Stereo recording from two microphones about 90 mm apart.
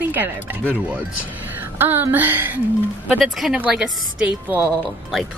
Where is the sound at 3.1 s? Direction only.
Centre (ahead or behind).